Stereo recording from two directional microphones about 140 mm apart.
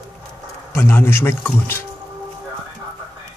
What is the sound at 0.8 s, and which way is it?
Speech, 15° left (ahead or behind).